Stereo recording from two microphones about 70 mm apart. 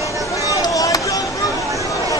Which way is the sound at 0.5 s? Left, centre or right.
Left.